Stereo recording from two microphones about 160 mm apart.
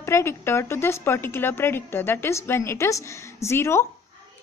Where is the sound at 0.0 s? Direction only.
15° left (ahead or behind).